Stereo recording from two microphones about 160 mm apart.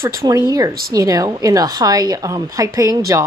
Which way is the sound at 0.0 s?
20° right (ahead or behind).